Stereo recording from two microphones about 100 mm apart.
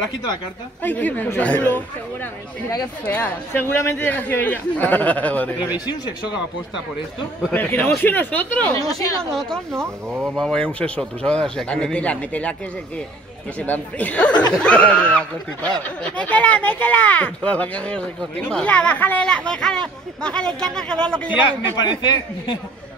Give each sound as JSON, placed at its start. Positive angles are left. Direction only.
{"t": 0.8, "sound": "speech", "side_deg": 20}
{"t": 3.1, "sound": "speech", "side_deg": 20}
{"t": 5.9, "sound": "a man's voice", "side_deg": 45}
{"t": 7.5, "sound": "a man's voice", "side_deg": 20}
{"t": 9.7, "sound": "speech", "side_deg": -25}
{"t": 10.3, "sound": "speech", "side_deg": 5}
{"t": 13.6, "sound": "speech", "side_deg": 15}
{"t": 21.4, "sound": "a man's voice", "side_deg": 50}